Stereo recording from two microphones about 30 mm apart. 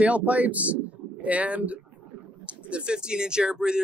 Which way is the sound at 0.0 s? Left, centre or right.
Right.